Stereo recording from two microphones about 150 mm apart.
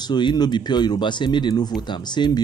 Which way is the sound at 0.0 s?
30° left (ahead or behind).